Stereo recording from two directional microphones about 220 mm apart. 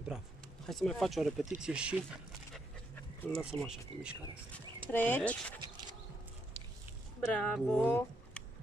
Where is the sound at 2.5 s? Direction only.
5° left (ahead or behind).